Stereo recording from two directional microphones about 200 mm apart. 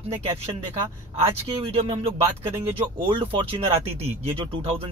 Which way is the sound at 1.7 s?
30° right (ahead or behind).